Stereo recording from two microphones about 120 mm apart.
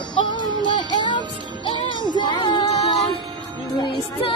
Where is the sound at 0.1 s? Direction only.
40° left (ahead or behind).